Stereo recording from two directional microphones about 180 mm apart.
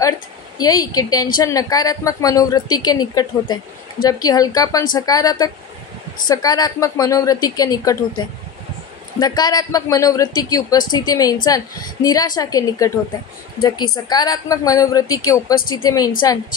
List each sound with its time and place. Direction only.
0.6 s a woman's voice: 20° left (ahead or behind)